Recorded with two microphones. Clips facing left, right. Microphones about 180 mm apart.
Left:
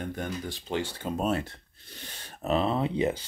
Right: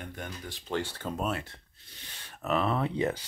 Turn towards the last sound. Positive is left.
turn(degrees=20)  # may be behind; listen again after turning